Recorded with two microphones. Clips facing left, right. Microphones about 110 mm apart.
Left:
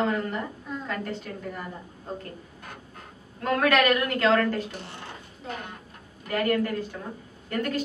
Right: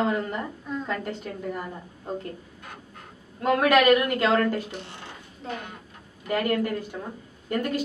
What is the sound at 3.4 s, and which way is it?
A woman's voice, 15° right (ahead or behind).